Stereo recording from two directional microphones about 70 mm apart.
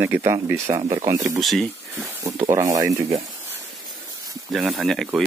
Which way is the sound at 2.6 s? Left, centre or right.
Right.